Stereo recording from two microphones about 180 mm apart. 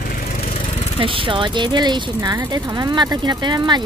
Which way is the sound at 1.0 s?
30° right (ahead or behind).